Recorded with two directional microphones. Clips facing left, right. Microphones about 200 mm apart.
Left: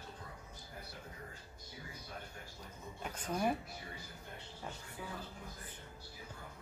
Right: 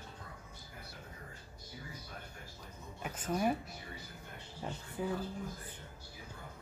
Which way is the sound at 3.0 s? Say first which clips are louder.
Right 2 dB; 5° right (ahead or behind).